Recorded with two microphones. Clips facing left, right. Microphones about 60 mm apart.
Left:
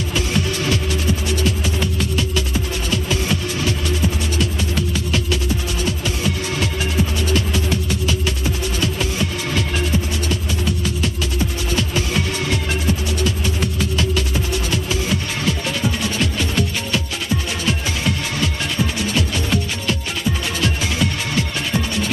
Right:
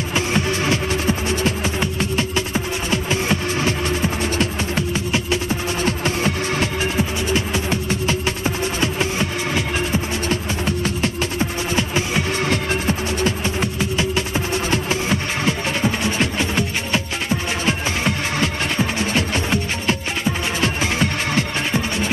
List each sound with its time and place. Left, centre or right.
0.1 s music: right